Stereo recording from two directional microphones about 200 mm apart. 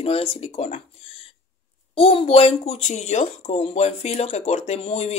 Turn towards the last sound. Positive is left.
turn(degrees=30)  # may be behind; listen again after turning